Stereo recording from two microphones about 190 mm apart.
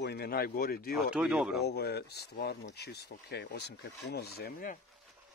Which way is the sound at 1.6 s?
55° left (ahead or behind).